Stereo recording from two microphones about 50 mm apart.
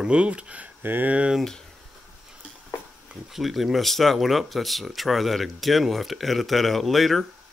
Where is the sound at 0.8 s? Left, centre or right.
Right.